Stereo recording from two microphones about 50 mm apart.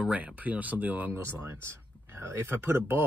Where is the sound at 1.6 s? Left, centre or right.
Right.